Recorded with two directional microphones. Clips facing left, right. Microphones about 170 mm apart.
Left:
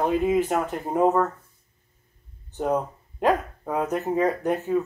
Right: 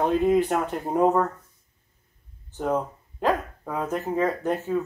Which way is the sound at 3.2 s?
20° left (ahead or behind).